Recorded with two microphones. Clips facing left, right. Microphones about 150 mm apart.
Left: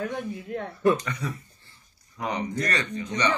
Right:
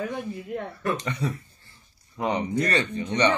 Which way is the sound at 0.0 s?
Centre (ahead or behind).